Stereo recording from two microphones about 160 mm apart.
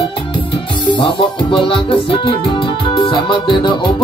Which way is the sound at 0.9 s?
30° left (ahead or behind).